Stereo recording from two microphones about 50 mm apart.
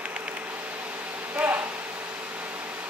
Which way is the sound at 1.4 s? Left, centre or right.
Right.